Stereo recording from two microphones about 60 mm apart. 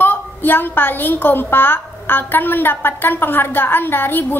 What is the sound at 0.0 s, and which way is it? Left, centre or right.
A woman's voice, left.